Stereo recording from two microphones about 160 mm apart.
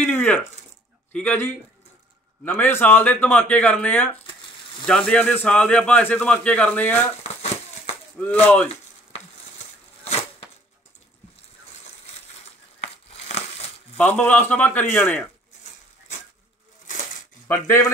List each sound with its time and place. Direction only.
0.0 s a sound: 10° left (ahead or behind)
1.1 s a man's voice: 10° left (ahead or behind)
7.2 s crumpling: 40° left (ahead or behind)
8.2 s a man's voice: 10° left (ahead or behind)
12.8 s crumpling: 40° left (ahead or behind)
13.9 s a man's voice: 10° left (ahead or behind)
17.5 s a man's voice: 20° left (ahead or behind)